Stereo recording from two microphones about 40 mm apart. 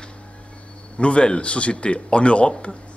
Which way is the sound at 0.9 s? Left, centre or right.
Left.